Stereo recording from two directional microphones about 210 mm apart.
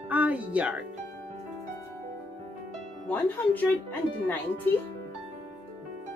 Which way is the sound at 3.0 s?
10° left (ahead or behind).